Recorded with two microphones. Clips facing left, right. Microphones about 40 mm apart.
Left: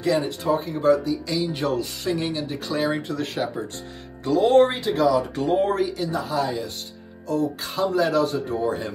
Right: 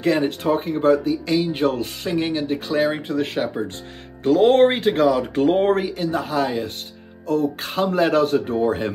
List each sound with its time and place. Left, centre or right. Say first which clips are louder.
0.0 s speech: right 3 dB; right
4.2 s speech: right 3 dB; right